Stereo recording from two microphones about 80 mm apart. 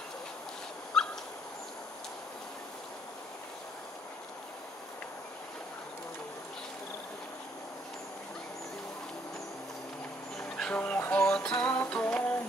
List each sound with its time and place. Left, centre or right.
0.9 s dog: centre
10.3 s a sound: centre
10.8 s music: centre
11.5 s music: left